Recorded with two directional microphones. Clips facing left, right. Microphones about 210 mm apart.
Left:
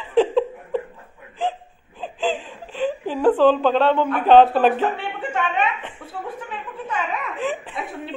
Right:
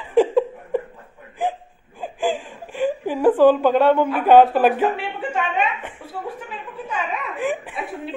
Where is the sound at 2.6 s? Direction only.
10° right (ahead or behind).